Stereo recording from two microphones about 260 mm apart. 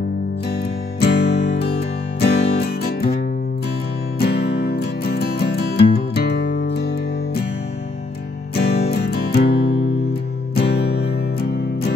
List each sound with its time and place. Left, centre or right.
0.5 s music: left
4.2 s music: left
8.5 s music: left